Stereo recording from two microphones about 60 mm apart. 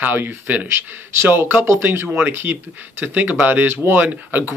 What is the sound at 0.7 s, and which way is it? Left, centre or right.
Speech, right.